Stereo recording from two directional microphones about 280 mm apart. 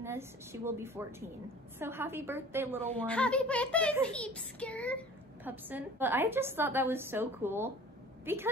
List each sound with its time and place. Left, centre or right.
0.0 s a woman's voice: centre
2.9 s a woman's voice: centre
5.4 s a woman's voice: centre